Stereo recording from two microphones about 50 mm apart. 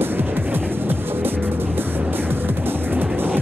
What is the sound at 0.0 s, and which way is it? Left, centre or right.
Music, right.